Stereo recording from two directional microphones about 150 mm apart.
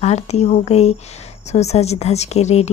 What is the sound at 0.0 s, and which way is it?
Speech, 45° left (ahead or behind).